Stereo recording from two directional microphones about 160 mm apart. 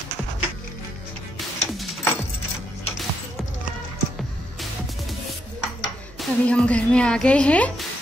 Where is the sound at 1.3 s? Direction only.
Centre (ahead or behind).